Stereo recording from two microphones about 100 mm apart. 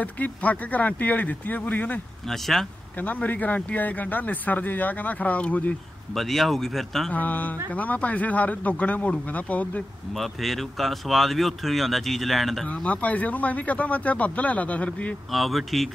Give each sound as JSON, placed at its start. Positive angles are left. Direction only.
{"t": 0.0, "sound": "speech", "side_deg": 15}
{"t": 2.2, "sound": "speech", "side_deg": 0}
{"t": 3.0, "sound": "speech", "side_deg": 15}
{"t": 6.1, "sound": "speech", "side_deg": 0}
{"t": 7.1, "sound": "speech", "side_deg": 15}
{"t": 10.1, "sound": "speech", "side_deg": 0}
{"t": 12.6, "sound": "speech", "side_deg": 15}
{"t": 15.3, "sound": "speech", "side_deg": 0}